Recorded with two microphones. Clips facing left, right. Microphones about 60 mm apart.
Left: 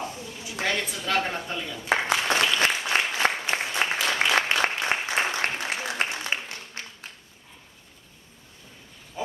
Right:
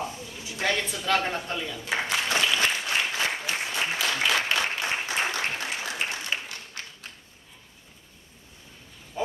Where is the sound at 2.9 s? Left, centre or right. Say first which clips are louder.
Left 3 dB; left.